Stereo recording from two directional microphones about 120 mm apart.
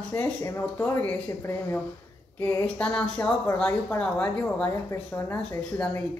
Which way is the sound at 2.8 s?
10° left (ahead or behind).